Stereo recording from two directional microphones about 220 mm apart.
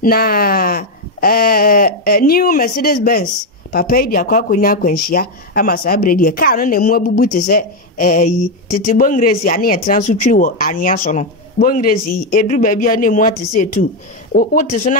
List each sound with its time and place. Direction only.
0.0 s a woman's voice: 45° left (ahead or behind)